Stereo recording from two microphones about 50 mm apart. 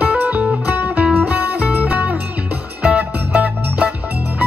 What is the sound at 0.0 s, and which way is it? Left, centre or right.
Music, right.